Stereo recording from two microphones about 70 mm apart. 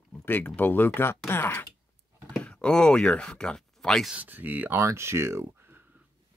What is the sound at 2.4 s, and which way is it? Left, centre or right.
Speech, centre.